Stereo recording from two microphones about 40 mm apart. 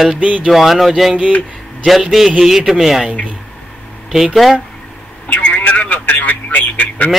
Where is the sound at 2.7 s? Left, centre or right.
Centre.